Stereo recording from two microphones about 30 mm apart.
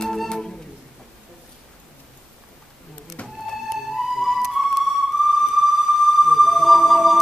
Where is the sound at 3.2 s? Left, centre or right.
Left.